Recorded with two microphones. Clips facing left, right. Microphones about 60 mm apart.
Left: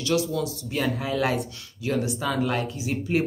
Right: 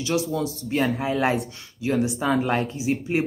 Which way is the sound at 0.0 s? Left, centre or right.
Right.